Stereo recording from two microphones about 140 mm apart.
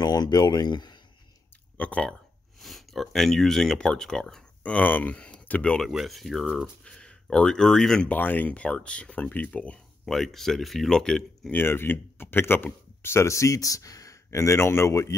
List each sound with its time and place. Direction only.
0.0 s speech: 30° left (ahead or behind)
1.8 s speech: 10° left (ahead or behind)
6.8 s speech: 5° left (ahead or behind)
11.6 s speech: 15° left (ahead or behind)